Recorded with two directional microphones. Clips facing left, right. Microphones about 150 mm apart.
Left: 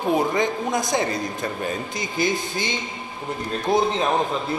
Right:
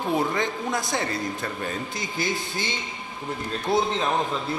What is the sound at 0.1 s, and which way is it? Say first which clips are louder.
A man's voice: left 4 dB; 15° left (ahead or behind).